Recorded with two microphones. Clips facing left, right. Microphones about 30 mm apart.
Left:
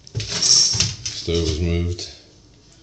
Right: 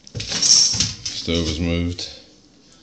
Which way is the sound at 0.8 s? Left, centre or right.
Right.